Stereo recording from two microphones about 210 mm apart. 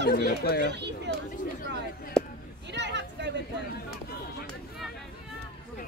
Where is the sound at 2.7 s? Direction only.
55° right (ahead or behind).